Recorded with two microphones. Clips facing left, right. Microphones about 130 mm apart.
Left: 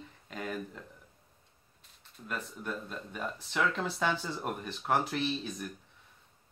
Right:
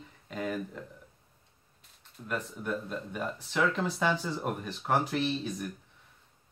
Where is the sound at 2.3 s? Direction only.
5° right (ahead or behind).